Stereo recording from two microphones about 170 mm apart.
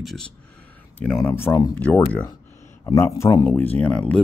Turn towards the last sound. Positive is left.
turn(degrees=5)  # may be behind; listen again after turning